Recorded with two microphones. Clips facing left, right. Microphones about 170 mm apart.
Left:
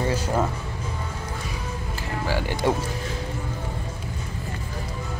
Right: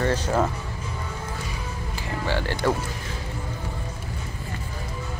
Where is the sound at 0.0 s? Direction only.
10° left (ahead or behind).